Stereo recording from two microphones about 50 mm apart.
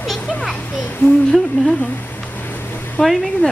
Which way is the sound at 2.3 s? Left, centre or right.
Left.